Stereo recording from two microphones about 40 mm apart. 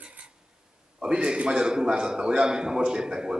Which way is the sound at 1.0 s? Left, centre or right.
Right.